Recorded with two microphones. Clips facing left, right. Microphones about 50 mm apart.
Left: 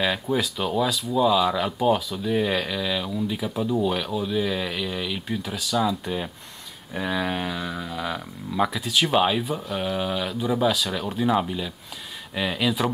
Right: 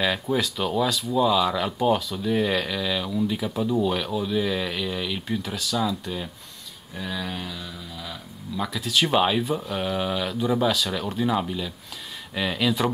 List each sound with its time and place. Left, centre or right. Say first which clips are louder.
0.0 s speech: even; centre
6.9 s speech: left 5 dB; left
8.6 s speech: right 4 dB; centre